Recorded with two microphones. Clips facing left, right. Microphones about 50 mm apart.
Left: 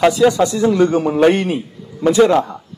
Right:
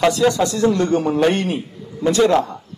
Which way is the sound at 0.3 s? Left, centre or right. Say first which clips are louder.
Left 2 dB; centre.